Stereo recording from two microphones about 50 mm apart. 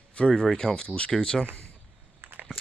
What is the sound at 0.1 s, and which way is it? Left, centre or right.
Speech, centre.